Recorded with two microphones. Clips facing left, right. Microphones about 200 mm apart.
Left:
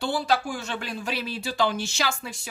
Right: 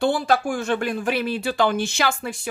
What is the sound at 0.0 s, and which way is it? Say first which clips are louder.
Speech: right 5 dB; 50° right (ahead or behind).